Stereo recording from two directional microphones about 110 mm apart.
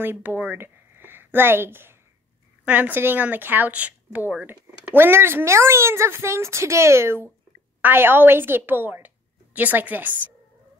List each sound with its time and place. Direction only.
0.0 s a woman's voice: 20° right (ahead or behind)